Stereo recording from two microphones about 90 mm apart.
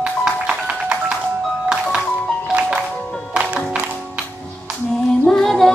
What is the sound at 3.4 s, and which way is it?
Music, 15° right (ahead or behind).